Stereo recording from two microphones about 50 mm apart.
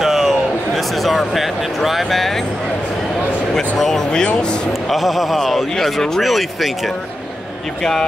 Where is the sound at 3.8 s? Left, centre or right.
Centre.